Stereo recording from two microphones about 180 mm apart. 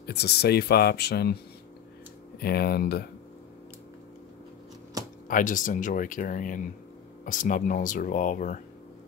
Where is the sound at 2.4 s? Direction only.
60° left (ahead or behind).